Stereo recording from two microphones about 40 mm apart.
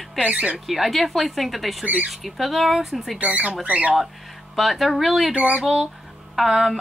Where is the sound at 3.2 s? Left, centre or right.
Right.